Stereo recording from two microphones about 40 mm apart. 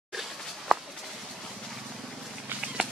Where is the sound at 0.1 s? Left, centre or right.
Centre.